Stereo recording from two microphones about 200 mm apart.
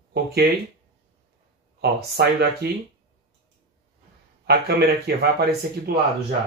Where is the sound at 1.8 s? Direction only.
50° right (ahead or behind).